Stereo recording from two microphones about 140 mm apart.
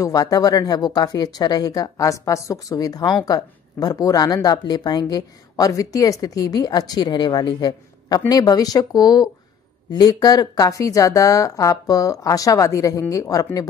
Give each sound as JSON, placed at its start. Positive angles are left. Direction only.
{"t": 0.0, "sound": "speech", "side_deg": 25}